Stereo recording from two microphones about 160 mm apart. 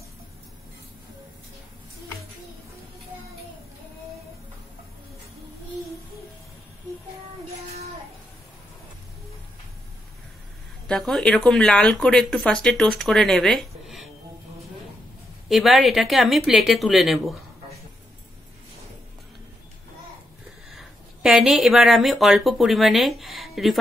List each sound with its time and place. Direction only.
10.9 s speech: centre (ahead or behind)
15.4 s speech: centre (ahead or behind)
20.7 s speech: centre (ahead or behind)